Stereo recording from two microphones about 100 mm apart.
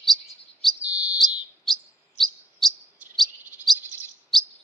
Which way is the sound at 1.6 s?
5° left (ahead or behind).